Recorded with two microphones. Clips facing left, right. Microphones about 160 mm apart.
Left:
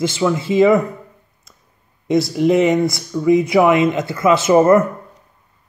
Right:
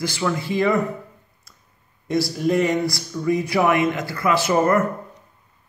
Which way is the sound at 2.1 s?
20° left (ahead or behind).